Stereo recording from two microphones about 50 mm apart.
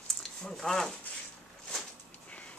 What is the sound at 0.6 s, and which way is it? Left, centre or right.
Speech, centre.